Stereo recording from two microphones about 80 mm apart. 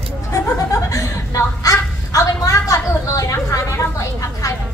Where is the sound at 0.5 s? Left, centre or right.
Left.